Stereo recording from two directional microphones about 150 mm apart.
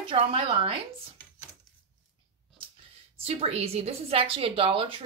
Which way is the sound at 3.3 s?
40° right (ahead or behind).